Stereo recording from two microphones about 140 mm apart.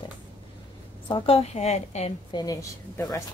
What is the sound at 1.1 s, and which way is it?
A woman's voice, 40° left (ahead or behind).